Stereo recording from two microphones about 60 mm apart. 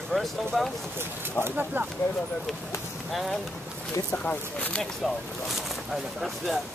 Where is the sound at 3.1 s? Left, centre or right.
Centre.